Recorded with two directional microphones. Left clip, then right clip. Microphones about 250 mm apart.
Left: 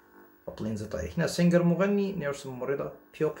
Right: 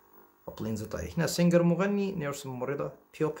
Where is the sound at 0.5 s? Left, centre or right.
Right.